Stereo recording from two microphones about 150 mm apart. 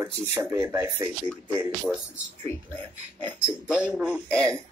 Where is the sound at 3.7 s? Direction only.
5° right (ahead or behind).